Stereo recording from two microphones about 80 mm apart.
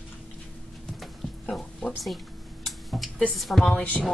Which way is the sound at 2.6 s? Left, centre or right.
Centre.